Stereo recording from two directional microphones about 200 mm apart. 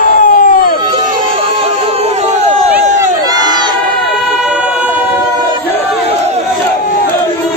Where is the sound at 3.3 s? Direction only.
20° right (ahead or behind).